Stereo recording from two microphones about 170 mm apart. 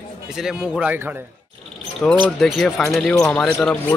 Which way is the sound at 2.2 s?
Centre (ahead or behind).